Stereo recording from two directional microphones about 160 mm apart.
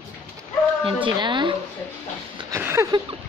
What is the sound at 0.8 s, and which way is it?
Speech, 30° right (ahead or behind).